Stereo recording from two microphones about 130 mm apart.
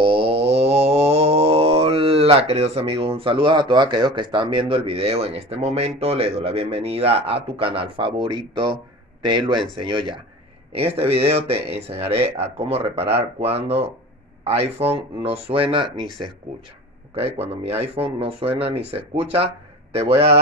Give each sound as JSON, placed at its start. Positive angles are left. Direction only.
{"t": 0.0, "sound": "mantra", "side_deg": -45}
{"t": 9.2, "sound": "speech", "side_deg": -35}
{"t": 10.7, "sound": "speech", "side_deg": -50}
{"t": 17.1, "sound": "speech", "side_deg": -50}